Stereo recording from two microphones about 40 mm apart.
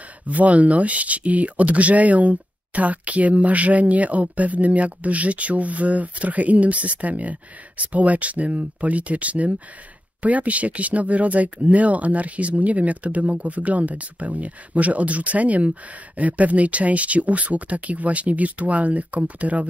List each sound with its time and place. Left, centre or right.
0.3 s speech: right